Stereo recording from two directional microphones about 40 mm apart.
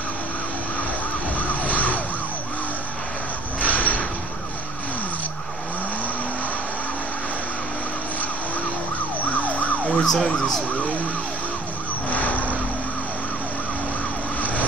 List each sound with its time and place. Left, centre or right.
1.3 s vehicle: left
3.5 s a sound: left
9.3 s emergency vehicle: left
9.9 s emergency vehicle: centre
12.1 s vehicle: left